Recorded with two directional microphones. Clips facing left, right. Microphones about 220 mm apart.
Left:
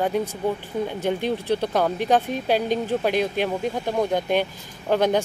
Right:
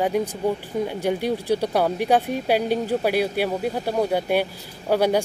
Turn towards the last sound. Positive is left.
turn(degrees=-10)  # may be behind; listen again after turning